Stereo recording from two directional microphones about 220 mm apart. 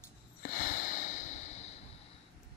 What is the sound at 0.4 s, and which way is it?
Snort, 40° left (ahead or behind).